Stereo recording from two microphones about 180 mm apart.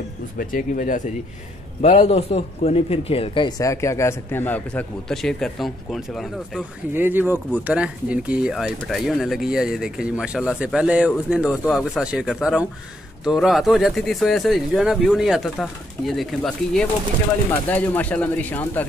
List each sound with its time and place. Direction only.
0.4 s speech: 50° left (ahead or behind)
1.8 s a man's voice: 35° left (ahead or behind); by 18.9 s 10° left (ahead or behind)